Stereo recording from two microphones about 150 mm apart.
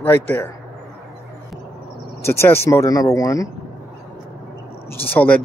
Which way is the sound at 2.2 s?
15° left (ahead or behind).